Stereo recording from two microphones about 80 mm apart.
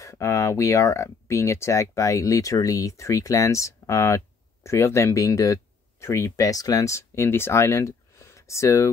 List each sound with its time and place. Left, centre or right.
0.0 s speech: left